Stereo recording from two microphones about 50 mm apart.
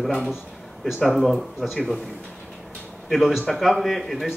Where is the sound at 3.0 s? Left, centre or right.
Centre.